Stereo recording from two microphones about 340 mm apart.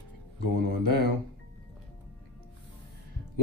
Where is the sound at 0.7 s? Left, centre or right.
Right.